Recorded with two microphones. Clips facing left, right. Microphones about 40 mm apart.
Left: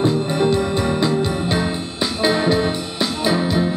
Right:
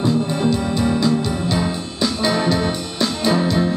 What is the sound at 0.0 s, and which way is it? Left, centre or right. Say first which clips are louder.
Music: left 1 dB; left.